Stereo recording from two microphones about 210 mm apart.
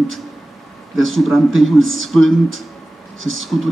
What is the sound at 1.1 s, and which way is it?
Mantra, centre (ahead or behind).